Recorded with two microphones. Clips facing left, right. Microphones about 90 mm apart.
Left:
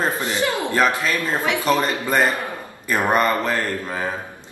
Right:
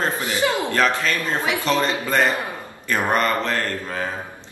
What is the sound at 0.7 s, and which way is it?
A man's voice, 15° left (ahead or behind).